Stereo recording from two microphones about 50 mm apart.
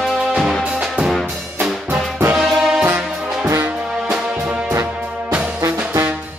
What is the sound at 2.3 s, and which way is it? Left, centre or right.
Music, centre.